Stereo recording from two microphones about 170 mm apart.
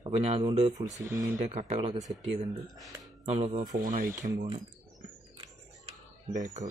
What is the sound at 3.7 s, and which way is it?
Speech, 50° right (ahead or behind).